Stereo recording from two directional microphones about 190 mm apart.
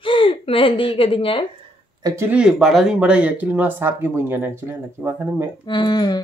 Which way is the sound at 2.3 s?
Centre (ahead or behind).